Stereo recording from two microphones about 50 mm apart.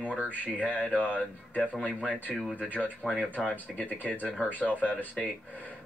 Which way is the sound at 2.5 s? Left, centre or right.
Left.